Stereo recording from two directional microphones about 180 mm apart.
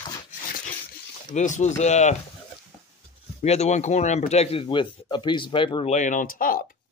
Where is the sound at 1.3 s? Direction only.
40° left (ahead or behind).